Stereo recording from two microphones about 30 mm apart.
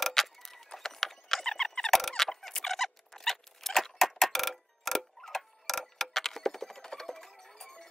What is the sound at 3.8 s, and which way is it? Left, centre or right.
Clock, centre.